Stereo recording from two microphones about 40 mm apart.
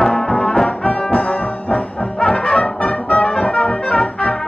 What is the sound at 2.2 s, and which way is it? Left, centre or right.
Brass instrument, centre.